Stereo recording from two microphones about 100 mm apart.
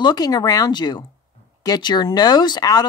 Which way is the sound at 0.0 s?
45° left (ahead or behind).